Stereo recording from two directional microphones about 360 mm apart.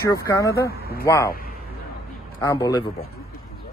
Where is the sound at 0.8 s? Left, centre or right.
Left.